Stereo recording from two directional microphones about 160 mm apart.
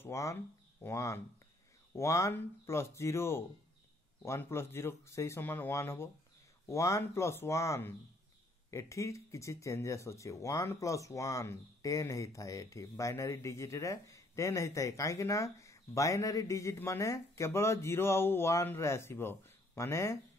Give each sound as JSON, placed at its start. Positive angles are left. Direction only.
{"t": 0.0, "sound": "speech", "side_deg": 20}